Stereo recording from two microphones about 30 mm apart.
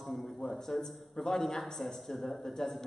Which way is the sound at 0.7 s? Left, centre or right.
Centre.